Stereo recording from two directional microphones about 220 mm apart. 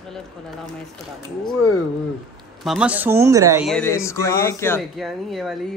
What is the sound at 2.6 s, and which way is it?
Speech, 5° right (ahead or behind).